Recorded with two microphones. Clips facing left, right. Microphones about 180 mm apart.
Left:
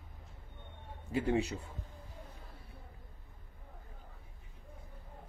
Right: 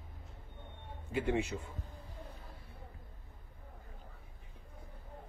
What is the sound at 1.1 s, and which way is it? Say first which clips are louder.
Speech: left 2 dB; 35° left (ahead or behind).